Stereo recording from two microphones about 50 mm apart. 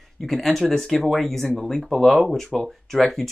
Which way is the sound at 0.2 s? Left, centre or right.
Centre.